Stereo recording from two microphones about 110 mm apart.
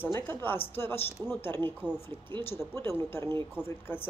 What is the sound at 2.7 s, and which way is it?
Speech, 20° left (ahead or behind).